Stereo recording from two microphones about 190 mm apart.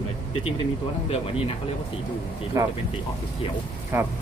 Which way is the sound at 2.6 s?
15° right (ahead or behind).